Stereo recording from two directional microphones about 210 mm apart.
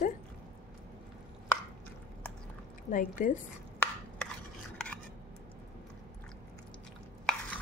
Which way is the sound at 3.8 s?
10° left (ahead or behind).